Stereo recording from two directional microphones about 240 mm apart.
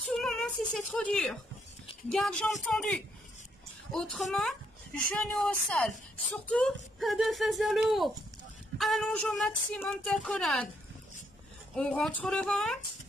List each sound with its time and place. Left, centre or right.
0.1 s a sound: centre
2.0 s speech: centre
11.7 s speech: centre